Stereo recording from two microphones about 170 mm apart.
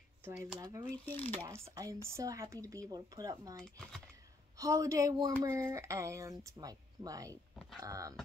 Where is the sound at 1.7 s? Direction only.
20° right (ahead or behind).